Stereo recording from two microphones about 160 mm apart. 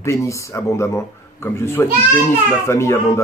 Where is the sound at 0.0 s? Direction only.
20° left (ahead or behind).